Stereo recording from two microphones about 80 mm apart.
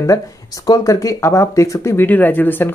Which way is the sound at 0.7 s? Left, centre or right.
Left.